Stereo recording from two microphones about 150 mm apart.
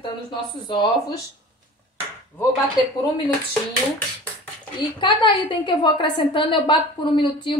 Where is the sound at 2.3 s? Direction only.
15° left (ahead or behind).